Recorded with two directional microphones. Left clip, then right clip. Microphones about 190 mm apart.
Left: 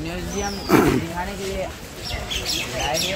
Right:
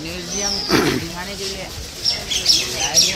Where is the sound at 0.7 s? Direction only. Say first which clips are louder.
Left 1 dB; 15° left (ahead or behind).